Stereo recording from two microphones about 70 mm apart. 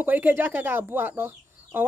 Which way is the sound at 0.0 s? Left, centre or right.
Right.